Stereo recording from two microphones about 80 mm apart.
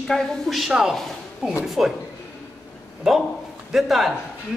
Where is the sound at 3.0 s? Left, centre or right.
Centre.